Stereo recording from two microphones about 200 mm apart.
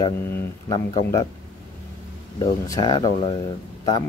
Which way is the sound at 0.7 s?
25° left (ahead or behind).